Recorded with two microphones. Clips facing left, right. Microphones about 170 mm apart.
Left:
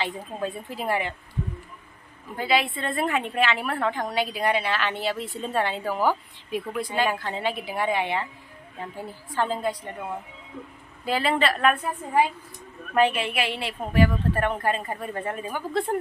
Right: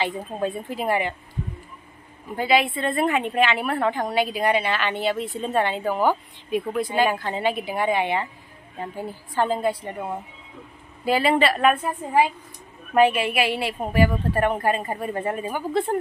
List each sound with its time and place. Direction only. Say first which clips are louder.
0.0 s a woman's voice: right 4 dB; centre (ahead or behind)
2.3 s a woman's voice: right 4 dB; centre (ahead or behind)
5.9 s a woman's voice: right 2 dB; 20° right (ahead or behind)
6.8 s a woman's voice: right 3 dB; centre (ahead or behind)
9.3 s a woman's voice: right 4 dB; 5° right (ahead or behind)
11.1 s a woman's voice: right 4 dB; 5° right (ahead or behind)